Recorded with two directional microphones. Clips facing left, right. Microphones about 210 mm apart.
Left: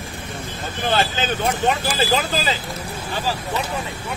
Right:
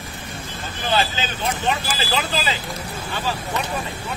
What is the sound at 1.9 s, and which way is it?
Speech, 45° left (ahead or behind).